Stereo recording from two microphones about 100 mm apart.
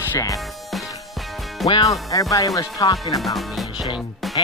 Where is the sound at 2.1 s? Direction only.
35° left (ahead or behind).